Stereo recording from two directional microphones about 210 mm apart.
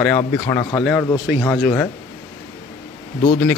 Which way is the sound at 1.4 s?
5° left (ahead or behind).